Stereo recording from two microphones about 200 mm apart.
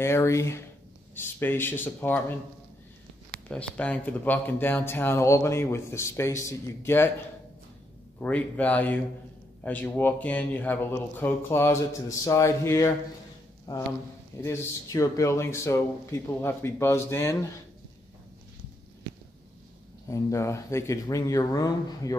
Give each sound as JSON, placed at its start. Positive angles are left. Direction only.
{"t": 0.0, "sound": "speech", "side_deg": 15}
{"t": 3.4, "sound": "speech", "side_deg": 5}
{"t": 8.2, "sound": "speech", "side_deg": 5}
{"t": 20.1, "sound": "speech", "side_deg": 15}